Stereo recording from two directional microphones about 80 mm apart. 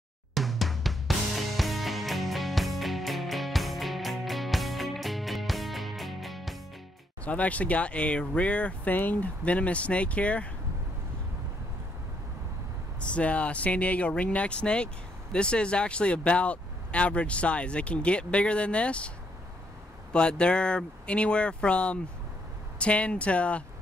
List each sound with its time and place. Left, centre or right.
0.3 s drum kit: centre
7.2 s speech: centre
13.0 s speech: centre